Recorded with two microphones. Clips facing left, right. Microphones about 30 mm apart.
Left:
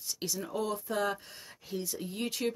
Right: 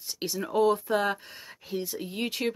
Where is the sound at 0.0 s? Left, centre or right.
Right.